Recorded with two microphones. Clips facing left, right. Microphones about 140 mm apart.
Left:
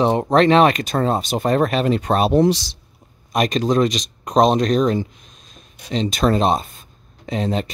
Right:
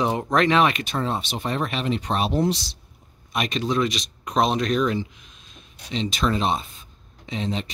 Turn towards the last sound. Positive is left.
turn(degrees=45)  # may be behind; listen again after turning